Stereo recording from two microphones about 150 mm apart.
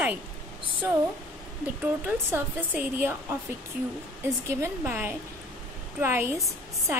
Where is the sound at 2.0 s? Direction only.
10° right (ahead or behind).